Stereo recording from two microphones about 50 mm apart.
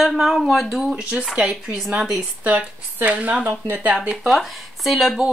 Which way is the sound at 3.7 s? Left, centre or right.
Right.